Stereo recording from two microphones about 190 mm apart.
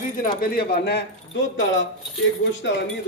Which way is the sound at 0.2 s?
55° left (ahead or behind).